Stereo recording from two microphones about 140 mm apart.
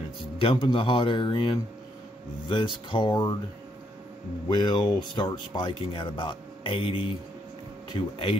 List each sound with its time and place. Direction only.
0.4 s speech: 40° left (ahead or behind)
4.5 s speech: 35° left (ahead or behind)